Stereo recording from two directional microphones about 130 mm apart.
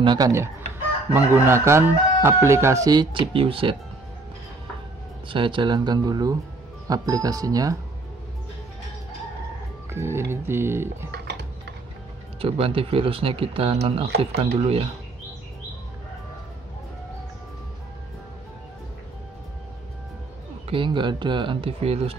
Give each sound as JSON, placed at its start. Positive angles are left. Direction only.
{"t": 0.0, "sound": "speech", "side_deg": -35}
{"t": 1.1, "sound": "speech", "side_deg": -15}
{"t": 5.3, "sound": "speech", "side_deg": -40}
{"t": 9.9, "sound": "speech", "side_deg": -20}
{"t": 12.4, "sound": "speech", "side_deg": -45}
{"t": 20.7, "sound": "speech", "side_deg": -40}